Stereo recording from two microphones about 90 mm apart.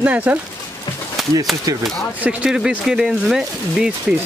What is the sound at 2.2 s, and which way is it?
Speech, 10° right (ahead or behind).